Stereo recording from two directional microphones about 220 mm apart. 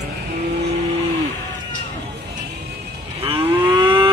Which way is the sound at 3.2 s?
25° right (ahead or behind).